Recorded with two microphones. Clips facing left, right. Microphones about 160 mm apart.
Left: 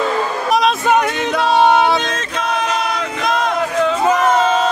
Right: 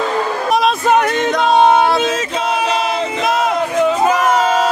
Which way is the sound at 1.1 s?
5° left (ahead or behind).